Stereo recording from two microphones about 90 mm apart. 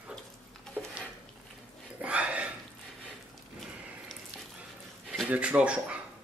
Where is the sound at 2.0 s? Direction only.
15° right (ahead or behind).